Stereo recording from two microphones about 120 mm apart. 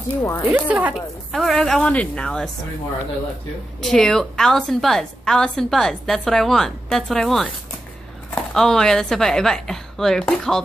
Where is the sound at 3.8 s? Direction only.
5° left (ahead or behind).